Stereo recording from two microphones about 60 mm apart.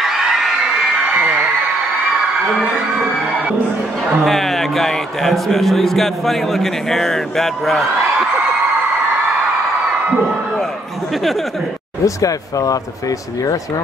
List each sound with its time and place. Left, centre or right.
0.0 s crowd: centre
1.1 s a sound: right
4.2 s a man's voice: centre
12.0 s speech: left